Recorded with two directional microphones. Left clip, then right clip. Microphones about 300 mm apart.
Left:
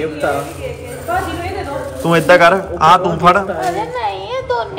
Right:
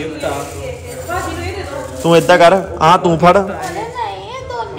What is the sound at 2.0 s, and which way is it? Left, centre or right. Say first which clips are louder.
Speech: right 1 dB; centre.